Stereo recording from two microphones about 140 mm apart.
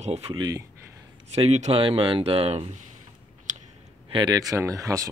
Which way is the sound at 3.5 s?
60° right (ahead or behind).